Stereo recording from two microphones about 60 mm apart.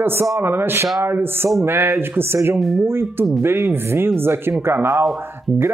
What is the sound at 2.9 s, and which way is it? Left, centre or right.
A man's voice, right.